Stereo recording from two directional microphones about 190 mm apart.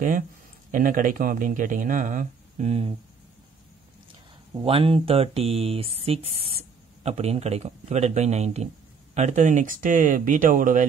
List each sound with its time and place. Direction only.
0.7 s speech: 45° right (ahead or behind)
4.6 s speech: 30° right (ahead or behind); by 10.9 s 45° right (ahead or behind)